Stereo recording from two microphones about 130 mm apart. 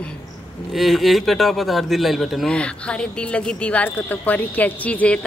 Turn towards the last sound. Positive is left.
turn(degrees=10)  # may be behind; listen again after turning